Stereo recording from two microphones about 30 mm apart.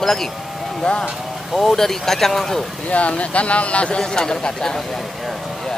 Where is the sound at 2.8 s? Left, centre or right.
Left.